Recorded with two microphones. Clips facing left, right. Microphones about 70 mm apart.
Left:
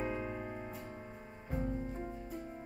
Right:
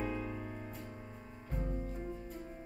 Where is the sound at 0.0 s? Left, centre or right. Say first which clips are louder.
Left 1 dB; centre.